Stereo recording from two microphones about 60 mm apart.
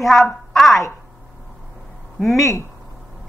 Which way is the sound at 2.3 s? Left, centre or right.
Left.